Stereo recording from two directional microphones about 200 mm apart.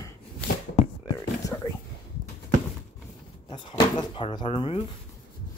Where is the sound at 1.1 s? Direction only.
20° left (ahead or behind).